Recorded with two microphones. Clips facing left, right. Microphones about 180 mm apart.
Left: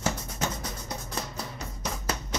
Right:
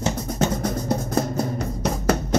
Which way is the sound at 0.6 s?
50° right (ahead or behind).